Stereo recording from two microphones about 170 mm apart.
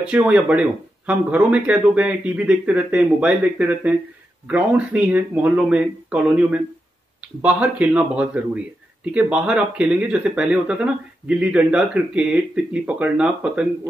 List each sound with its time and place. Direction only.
0.0 s speech: 5° right (ahead or behind)